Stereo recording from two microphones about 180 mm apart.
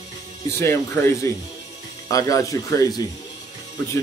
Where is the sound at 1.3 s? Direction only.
15° left (ahead or behind).